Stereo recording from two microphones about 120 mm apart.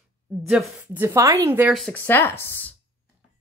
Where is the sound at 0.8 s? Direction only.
15° right (ahead or behind).